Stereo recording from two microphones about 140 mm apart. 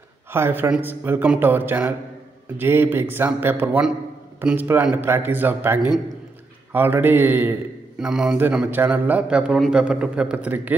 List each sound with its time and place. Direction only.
0.3 s a man's voice: 15° right (ahead or behind)